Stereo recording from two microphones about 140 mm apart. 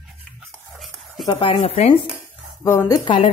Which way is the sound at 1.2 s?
40° left (ahead or behind).